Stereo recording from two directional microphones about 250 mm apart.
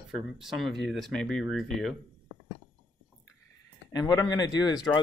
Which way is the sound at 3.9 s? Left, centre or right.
Centre.